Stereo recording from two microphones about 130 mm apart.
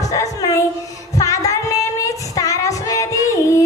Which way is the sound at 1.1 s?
25° left (ahead or behind).